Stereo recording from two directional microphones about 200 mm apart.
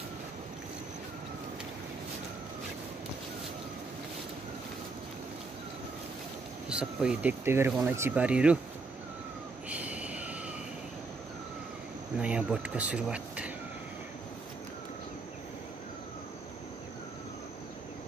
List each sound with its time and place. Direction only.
6.7 s speech: 5° right (ahead or behind)
9.7 s a sound: 5° right (ahead or behind)
12.2 s speech: 5° right (ahead or behind)